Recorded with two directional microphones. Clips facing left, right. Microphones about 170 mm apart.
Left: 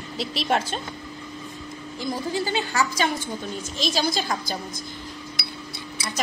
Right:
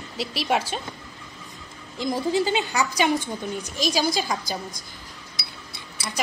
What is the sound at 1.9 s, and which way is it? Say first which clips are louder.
A woman's voice: right 4 dB; 20° right (ahead or behind).